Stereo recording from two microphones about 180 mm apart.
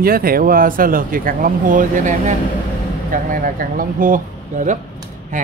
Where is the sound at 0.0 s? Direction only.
55° right (ahead or behind).